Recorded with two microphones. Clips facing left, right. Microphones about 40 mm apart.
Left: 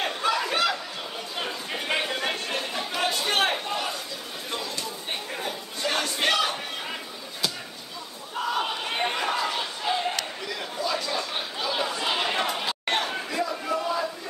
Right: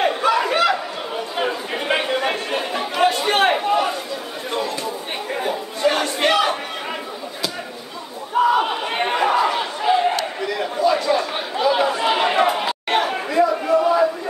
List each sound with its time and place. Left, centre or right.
0.0 s chatter: centre
3.6 s a sound: centre
5.3 s chatter: right
8.5 s chatter: right
10.4 s a sound: centre
11.1 s chatter: right
12.8 s chatter: centre
13.1 s chatter: right
13.7 s a sound: right